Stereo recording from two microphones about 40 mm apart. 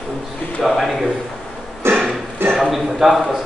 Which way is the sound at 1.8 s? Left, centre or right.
Right.